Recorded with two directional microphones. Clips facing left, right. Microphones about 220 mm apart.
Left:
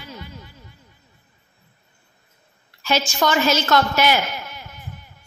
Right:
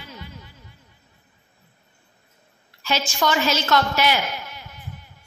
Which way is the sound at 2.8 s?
45° left (ahead or behind).